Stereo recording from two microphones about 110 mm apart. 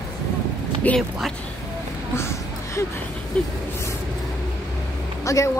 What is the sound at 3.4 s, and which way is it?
Speech, 10° left (ahead or behind).